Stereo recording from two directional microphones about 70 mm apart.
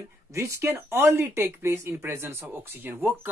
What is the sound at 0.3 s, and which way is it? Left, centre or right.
Speech, right.